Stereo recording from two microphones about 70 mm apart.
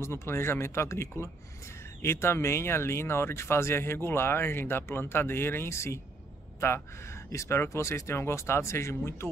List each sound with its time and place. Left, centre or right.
0.0 s speech: left
7.3 s speech: left